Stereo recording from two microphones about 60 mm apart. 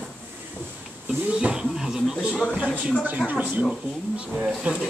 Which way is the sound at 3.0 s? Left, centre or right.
Right.